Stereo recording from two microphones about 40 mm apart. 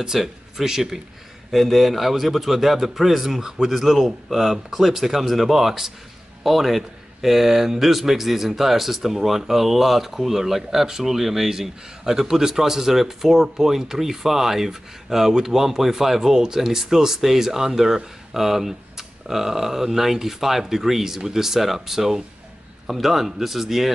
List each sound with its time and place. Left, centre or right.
0.0 s speech: centre
1.5 s a man's voice: centre